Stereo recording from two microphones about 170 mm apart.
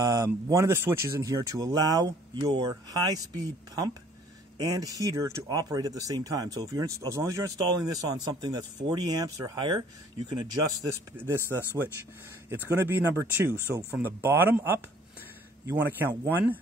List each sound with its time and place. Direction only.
0.0 s speech: 20° right (ahead or behind)
10.9 s a man's voice: 15° right (ahead or behind)
12.6 s a man's voice: 10° right (ahead or behind)